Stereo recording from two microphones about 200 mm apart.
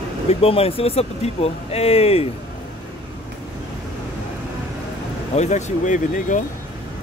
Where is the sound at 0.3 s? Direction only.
30° left (ahead or behind).